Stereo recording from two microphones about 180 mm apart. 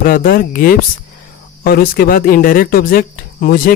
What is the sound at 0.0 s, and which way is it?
Speech, 50° left (ahead or behind).